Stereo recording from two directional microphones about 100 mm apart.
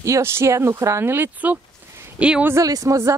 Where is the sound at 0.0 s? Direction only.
30° right (ahead or behind); by 2.4 s 10° right (ahead or behind).